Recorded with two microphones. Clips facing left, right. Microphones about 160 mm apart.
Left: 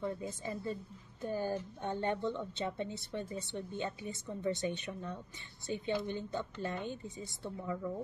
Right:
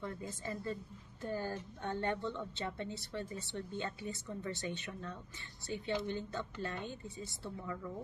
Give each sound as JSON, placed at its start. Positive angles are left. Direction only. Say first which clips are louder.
{"t": 0.0, "sound": "a woman's voice", "louder": "left 4 dB", "side_deg": 20}